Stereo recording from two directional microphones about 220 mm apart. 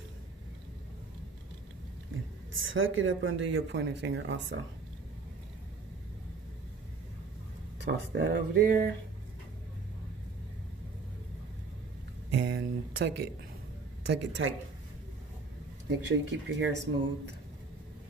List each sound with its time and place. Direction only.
2.1 s speech: 60° right (ahead or behind)
7.8 s speech: 55° right (ahead or behind)
12.3 s speech: 50° right (ahead or behind)
15.9 s speech: 55° right (ahead or behind)